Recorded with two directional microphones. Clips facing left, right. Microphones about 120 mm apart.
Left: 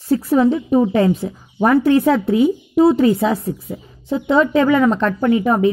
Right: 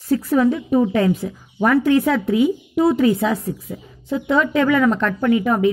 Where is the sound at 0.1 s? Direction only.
30° left (ahead or behind).